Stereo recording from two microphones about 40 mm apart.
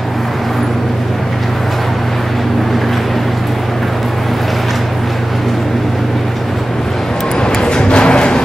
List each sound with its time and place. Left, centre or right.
7.5 s music: left